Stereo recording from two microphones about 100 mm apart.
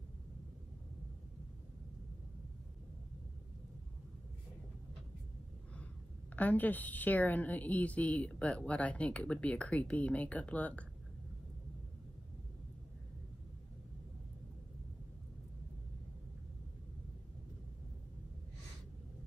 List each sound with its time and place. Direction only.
6.3 s a woman's voice: 15° left (ahead or behind)